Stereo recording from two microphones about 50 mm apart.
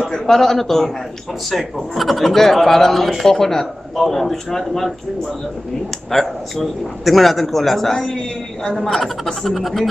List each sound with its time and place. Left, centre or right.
0.0 s a man's voice: centre
6.1 s speech: centre